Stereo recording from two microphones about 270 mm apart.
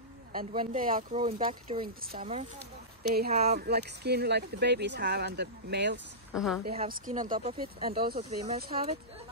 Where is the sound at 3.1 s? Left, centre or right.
Right.